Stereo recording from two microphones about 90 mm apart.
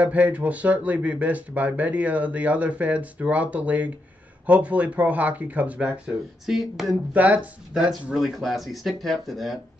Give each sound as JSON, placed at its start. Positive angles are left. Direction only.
{"t": 0.0, "sound": "speech", "side_deg": -15}
{"t": 6.4, "sound": "speech", "side_deg": -5}
{"t": 7.2, "sound": "speech", "side_deg": -20}
{"t": 7.7, "sound": "speech", "side_deg": -5}